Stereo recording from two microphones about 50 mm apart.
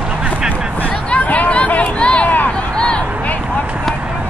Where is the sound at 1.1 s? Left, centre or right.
Left.